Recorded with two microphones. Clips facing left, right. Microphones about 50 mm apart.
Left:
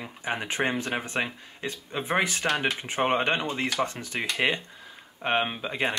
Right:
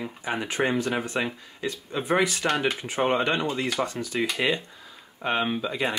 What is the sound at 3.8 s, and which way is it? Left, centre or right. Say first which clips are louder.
Speech: right 4 dB; left.